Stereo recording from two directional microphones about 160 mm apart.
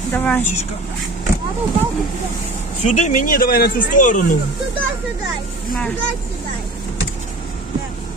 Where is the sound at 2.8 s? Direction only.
50° left (ahead or behind).